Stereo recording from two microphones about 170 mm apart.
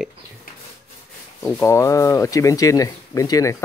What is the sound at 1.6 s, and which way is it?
Speech, 15° left (ahead or behind).